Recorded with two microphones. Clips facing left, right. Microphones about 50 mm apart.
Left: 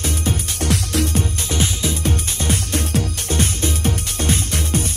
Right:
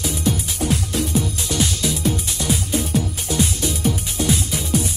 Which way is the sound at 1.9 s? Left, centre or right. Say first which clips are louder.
Right 1 dB; left.